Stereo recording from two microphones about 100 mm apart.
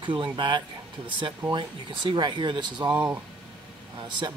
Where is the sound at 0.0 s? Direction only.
50° right (ahead or behind).